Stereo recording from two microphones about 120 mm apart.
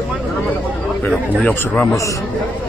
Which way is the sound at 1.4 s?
5° left (ahead or behind).